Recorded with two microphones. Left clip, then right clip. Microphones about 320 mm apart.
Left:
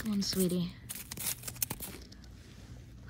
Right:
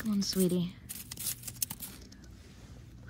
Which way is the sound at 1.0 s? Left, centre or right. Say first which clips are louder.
Left 1 dB; centre.